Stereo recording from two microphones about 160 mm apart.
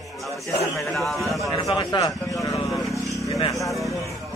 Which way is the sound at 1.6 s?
25° left (ahead or behind).